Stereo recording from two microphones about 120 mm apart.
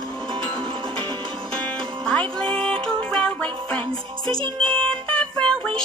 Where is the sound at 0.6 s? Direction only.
35° right (ahead or behind).